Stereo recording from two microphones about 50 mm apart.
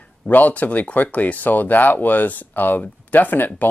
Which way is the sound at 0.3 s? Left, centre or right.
Left.